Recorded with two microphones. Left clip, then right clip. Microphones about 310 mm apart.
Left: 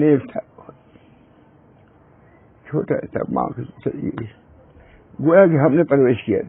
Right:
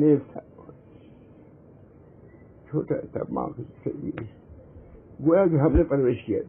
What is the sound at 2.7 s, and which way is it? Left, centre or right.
A man's voice, left.